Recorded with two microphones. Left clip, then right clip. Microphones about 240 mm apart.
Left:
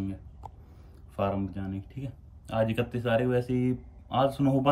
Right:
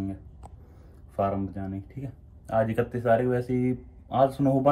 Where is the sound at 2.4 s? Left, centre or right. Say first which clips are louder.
Right 3 dB; centre.